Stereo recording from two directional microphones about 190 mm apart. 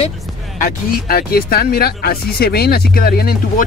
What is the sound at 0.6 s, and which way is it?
Speech, 50° left (ahead or behind).